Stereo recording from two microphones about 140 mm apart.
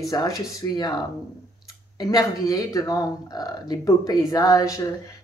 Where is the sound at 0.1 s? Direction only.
25° left (ahead or behind).